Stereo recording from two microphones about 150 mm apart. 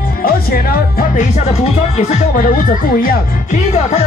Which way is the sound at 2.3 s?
70° left (ahead or behind).